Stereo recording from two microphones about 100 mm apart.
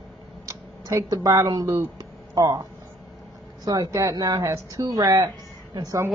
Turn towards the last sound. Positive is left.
turn(degrees=-35)  # may be behind; listen again after turning